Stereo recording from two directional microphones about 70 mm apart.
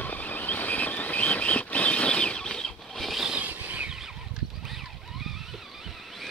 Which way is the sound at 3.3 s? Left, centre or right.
Right.